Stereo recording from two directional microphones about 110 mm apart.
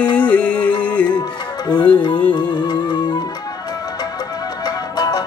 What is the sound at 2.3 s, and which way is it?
Music, 40° left (ahead or behind).